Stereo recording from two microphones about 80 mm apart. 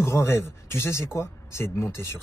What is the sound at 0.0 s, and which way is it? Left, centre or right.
Speech, left.